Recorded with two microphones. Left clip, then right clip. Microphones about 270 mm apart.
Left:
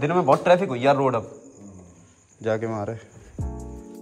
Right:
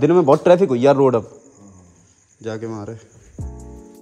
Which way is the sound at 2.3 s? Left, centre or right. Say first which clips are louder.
Left 3 dB; centre.